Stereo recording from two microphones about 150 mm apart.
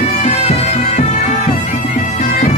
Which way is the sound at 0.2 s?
45° left (ahead or behind).